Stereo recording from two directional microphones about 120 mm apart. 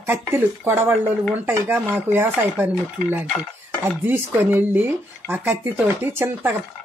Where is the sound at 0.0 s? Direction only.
20° right (ahead or behind).